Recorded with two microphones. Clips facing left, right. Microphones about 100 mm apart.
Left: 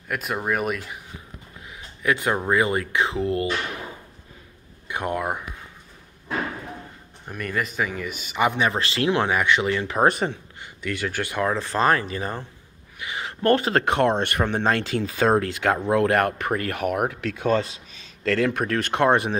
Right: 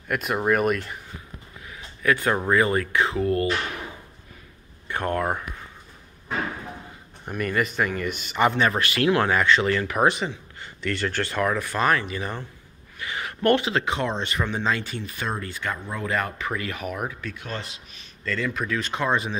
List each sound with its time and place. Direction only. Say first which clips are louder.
0.1 s speech: right 3 dB; centre (ahead or behind)
1.7 s a sound: right 1 dB; 20° left (ahead or behind)
2.5 s speech: right 1 dB; 20° left (ahead or behind)
4.8 s speech: right 1 dB; 15° left (ahead or behind)
7.2 s speech: right 3 dB; centre (ahead or behind)
8.7 s speech: right 1 dB; 25° left (ahead or behind)
10.0 s speech: left 3 dB; 45° left (ahead or behind)
10.6 s speech: right 1 dB; 10° left (ahead or behind)
11.4 s speech: left 2 dB; 30° left (ahead or behind)
13.0 s speech: even; 20° left (ahead or behind)
13.4 s speech: left 1 dB; 35° left (ahead or behind)
13.7 s speech: left 5 dB; 55° left (ahead or behind); by 15.8 s 90° left
15.9 s speech: left 8 dB; 70° left (ahead or behind)